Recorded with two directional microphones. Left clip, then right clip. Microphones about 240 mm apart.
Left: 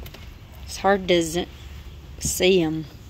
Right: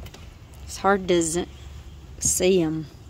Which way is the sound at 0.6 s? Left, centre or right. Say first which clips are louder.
Left 1 dB; centre.